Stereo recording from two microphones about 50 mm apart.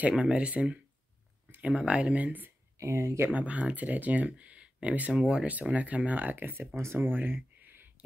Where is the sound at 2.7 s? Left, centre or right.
Right.